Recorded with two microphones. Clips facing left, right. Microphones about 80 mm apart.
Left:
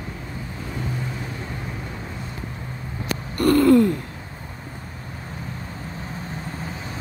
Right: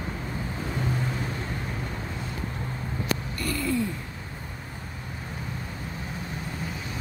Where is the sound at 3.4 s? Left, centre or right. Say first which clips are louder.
Left 16 dB; left.